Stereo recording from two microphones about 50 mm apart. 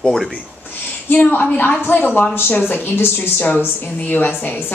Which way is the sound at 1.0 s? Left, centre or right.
Left.